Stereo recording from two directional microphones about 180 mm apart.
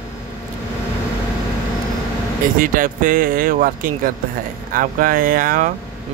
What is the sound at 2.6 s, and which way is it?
Speech, 50° right (ahead or behind).